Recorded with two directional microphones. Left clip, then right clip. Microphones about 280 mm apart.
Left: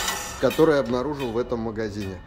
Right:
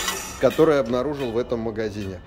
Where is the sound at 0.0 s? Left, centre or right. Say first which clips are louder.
Right 2 dB; centre.